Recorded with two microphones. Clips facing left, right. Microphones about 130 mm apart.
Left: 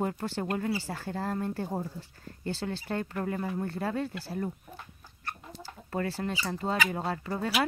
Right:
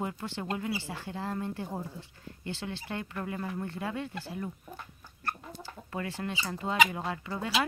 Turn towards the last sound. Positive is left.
turn(degrees=40)  # may be behind; listen again after turning